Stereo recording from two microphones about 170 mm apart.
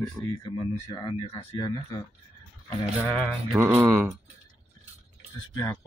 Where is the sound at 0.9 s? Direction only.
25° left (ahead or behind).